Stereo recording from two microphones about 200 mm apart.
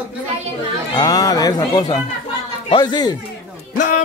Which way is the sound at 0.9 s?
20° left (ahead or behind).